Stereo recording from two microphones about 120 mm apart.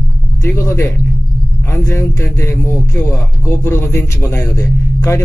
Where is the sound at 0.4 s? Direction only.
20° left (ahead or behind).